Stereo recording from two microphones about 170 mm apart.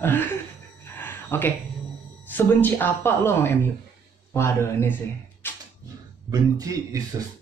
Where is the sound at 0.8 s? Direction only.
15° left (ahead or behind).